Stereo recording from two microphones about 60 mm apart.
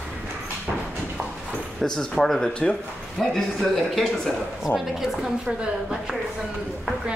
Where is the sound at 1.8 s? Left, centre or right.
Centre.